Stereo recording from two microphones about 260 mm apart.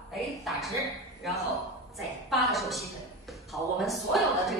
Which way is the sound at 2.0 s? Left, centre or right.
Centre.